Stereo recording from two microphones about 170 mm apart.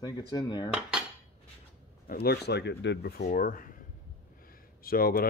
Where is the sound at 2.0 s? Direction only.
60° left (ahead or behind); by 3.2 s 85° left.